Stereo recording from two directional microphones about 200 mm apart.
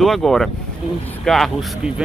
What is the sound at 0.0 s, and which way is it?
Speech, centre (ahead or behind).